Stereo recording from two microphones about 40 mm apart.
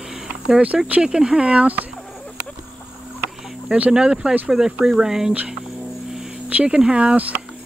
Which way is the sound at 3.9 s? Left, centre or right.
Centre.